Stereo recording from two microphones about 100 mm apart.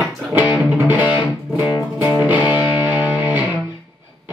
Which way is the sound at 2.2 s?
15° right (ahead or behind).